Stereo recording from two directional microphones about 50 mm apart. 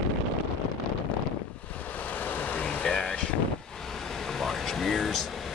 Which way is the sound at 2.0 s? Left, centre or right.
Left.